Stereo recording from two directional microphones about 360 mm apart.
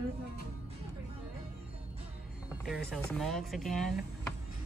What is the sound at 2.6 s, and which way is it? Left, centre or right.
Speech, centre.